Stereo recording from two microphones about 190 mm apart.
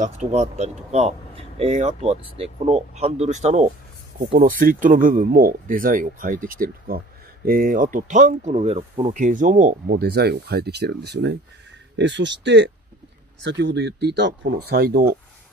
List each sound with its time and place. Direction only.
0.0 s speech: 35° right (ahead or behind); by 15.1 s 55° right (ahead or behind)